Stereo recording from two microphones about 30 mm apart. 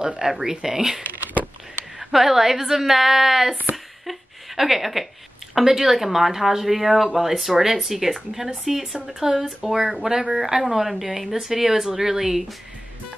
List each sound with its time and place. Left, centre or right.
0.4 s speech: centre
1.2 s a sound: right
2.0 s a woman's voice: centre
3.7 s a sound: centre
5.5 s a woman's voice: centre
9.0 s a woman's voice: centre